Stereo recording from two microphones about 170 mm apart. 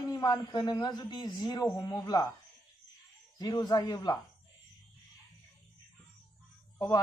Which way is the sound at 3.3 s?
25° left (ahead or behind).